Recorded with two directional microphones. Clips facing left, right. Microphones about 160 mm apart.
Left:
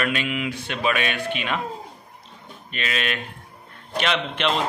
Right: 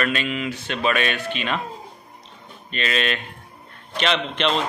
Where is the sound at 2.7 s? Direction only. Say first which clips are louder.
Right 3 dB; 10° left (ahead or behind).